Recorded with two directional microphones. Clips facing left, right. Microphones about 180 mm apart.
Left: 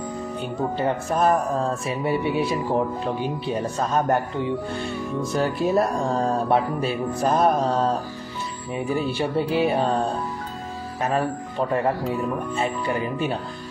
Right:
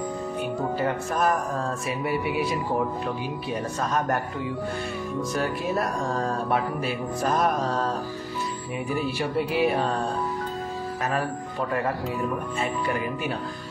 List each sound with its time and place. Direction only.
0.7 s music: 25° left (ahead or behind)
11.0 s speech: 25° left (ahead or behind)
12.5 s music: 30° left (ahead or behind)